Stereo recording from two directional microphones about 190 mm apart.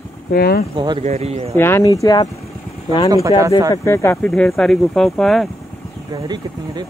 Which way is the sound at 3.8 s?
15° left (ahead or behind).